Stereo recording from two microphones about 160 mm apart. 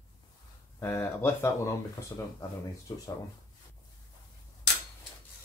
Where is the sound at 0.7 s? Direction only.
15° left (ahead or behind).